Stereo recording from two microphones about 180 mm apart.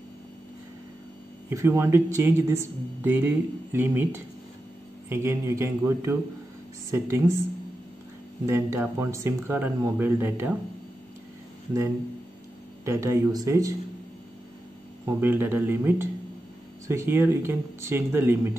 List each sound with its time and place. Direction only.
1.5 s speech: 15° right (ahead or behind)
8.5 s speech: 15° right (ahead or behind)
12.8 s speech: 15° right (ahead or behind)
15.0 s speech: 10° right (ahead or behind)